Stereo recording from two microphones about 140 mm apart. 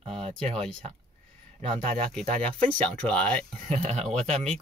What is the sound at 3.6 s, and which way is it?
Speech, 50° right (ahead or behind).